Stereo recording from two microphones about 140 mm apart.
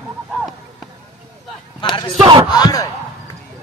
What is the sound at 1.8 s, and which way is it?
Speech, 35° left (ahead or behind).